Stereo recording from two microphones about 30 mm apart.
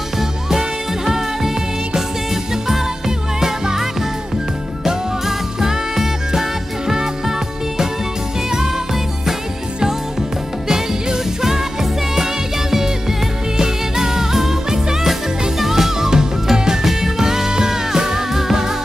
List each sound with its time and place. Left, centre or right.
0.2 s music: centre
3.3 s music: centre
4.8 s music: centre
13.6 s music: centre